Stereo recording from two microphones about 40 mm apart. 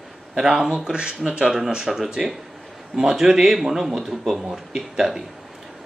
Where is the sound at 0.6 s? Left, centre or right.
Right.